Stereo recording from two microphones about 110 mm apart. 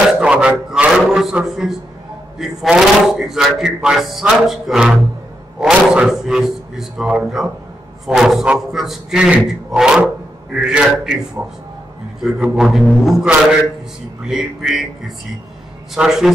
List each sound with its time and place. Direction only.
0.1 s a sound: 10° right (ahead or behind)
2.3 s a man's voice: 5° right (ahead or behind)
11.4 s a man's voice: 20° right (ahead or behind)
12.2 s speech: 5° right (ahead or behind)